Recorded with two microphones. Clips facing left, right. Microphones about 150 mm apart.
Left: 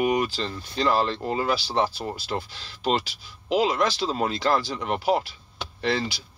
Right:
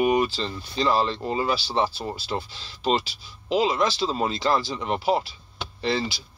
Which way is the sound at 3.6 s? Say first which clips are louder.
Right 1 dB; 60° left (ahead or behind).